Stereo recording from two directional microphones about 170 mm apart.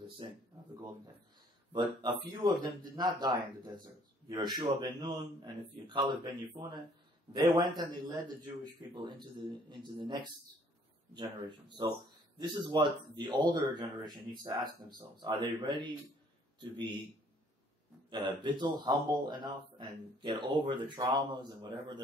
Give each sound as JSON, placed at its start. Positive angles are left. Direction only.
{"t": 0.2, "sound": "speech", "side_deg": -30}
{"t": 7.3, "sound": "speech", "side_deg": -25}
{"t": 18.1, "sound": "speech", "side_deg": -25}